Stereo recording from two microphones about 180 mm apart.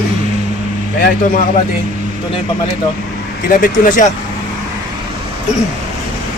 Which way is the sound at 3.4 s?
50° left (ahead or behind).